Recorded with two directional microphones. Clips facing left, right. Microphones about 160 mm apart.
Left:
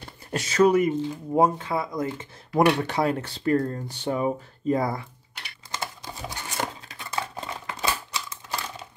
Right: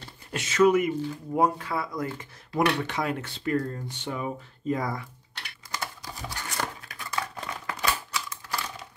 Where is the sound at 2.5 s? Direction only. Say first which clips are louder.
Left 5 dB; 35° left (ahead or behind).